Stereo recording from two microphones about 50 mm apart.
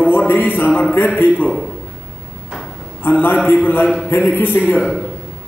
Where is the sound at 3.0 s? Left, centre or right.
Left.